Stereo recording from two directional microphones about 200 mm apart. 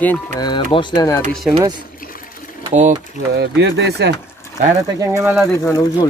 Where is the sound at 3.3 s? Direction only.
60° right (ahead or behind).